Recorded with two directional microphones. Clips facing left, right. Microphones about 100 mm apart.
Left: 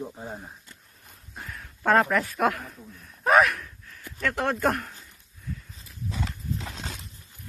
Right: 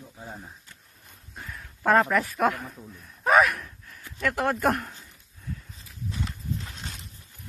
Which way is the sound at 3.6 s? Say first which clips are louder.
Left 1 dB; 20° right (ahead or behind).